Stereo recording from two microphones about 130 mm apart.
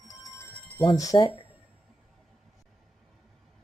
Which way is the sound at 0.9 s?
25° left (ahead or behind).